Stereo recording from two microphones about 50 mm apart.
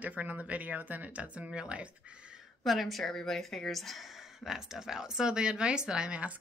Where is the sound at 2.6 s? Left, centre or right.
Centre.